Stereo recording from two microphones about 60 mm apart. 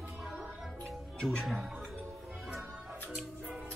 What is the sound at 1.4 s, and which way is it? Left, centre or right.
Speech, centre.